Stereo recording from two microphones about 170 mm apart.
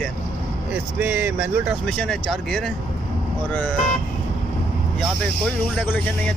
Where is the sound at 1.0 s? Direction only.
10° right (ahead or behind).